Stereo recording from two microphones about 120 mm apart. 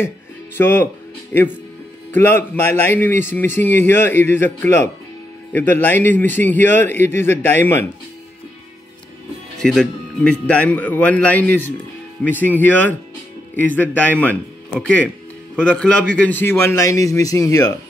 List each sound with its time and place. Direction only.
0.6 s a man's voice: 20° left (ahead or behind)
9.6 s a man's voice: 5° left (ahead or behind); by 17.7 s 30° left (ahead or behind)